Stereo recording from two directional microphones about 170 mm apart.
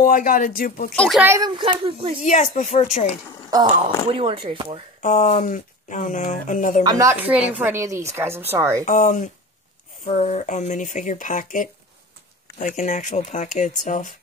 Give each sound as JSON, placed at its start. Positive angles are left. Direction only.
{"t": 0.0, "sound": "speech", "side_deg": 55}
{"t": 0.9, "sound": "speech", "side_deg": 5}
{"t": 1.2, "sound": "speech", "side_deg": -15}
{"t": 1.6, "sound": "speech", "side_deg": -30}
{"t": 2.2, "sound": "speech", "side_deg": 45}
{"t": 3.8, "sound": "speech", "side_deg": -30}
{"t": 5.0, "sound": "speech", "side_deg": 50}
{"t": 6.8, "sound": "speech", "side_deg": -20}
{"t": 8.8, "sound": "speech", "side_deg": 50}